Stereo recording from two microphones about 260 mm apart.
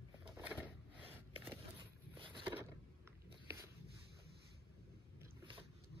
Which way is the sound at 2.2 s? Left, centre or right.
Centre.